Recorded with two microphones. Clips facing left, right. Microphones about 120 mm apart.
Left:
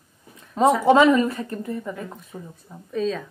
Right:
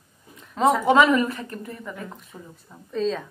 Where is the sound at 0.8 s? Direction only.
30° left (ahead or behind).